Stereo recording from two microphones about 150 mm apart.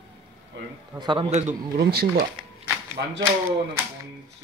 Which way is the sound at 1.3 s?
50° right (ahead or behind).